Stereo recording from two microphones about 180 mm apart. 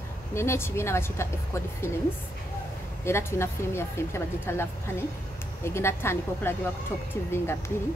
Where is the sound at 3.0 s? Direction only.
15° left (ahead or behind).